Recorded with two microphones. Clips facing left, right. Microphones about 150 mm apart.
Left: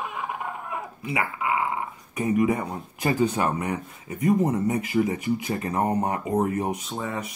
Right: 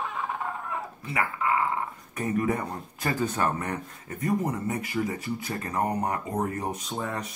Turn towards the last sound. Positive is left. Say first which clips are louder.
# left 1 dB
turn(degrees=0)  # may be behind; listen again after turning